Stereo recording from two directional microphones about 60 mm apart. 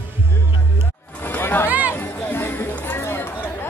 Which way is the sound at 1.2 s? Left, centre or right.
Left.